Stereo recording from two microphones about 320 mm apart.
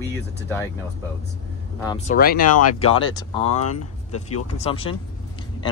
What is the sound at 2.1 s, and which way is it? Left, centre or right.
Speech, left.